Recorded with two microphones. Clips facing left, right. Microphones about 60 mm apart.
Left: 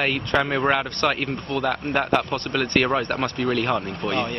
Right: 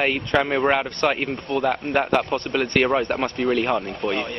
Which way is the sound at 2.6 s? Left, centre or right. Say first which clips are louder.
Right 1 dB; centre.